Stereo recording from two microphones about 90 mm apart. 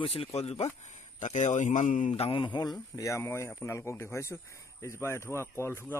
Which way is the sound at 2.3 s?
70° left (ahead or behind).